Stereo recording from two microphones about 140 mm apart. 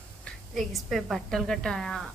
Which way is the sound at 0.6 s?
Centre (ahead or behind).